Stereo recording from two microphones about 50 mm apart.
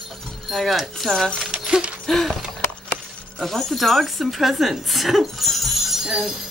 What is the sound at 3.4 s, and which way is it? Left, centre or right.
Speech, centre.